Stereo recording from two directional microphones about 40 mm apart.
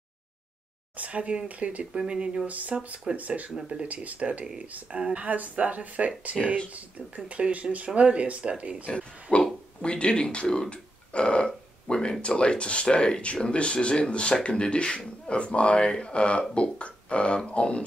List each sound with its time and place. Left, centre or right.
0.9 s speech: right
2.0 s speech: right
2.4 s speech: right
3.5 s speech: right
3.9 s speech: right
9.4 s speech: left